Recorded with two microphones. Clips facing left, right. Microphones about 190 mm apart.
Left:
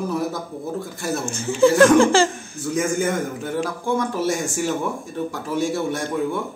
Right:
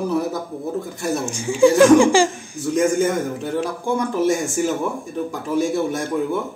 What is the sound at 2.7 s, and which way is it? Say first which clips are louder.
A man's voice: right 4 dB; centre (ahead or behind).